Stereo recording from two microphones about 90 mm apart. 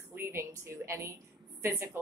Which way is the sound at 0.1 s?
30° right (ahead or behind).